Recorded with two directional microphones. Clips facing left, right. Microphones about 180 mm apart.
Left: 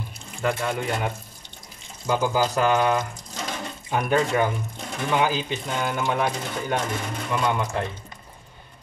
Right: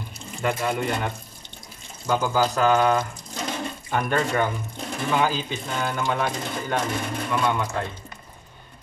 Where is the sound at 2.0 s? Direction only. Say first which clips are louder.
Even; 10° left (ahead or behind).